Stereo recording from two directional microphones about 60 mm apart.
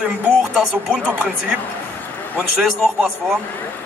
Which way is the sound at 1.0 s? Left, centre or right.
Centre.